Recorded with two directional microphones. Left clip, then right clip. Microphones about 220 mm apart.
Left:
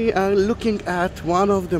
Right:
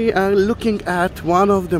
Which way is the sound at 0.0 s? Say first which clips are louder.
Right 3 dB; 10° right (ahead or behind).